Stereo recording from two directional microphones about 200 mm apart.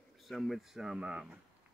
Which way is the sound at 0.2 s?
Centre (ahead or behind).